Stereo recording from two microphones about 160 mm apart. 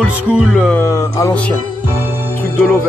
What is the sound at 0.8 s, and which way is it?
Speech, 20° left (ahead or behind).